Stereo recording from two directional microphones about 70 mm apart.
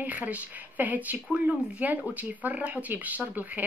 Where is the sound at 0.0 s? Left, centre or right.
Right.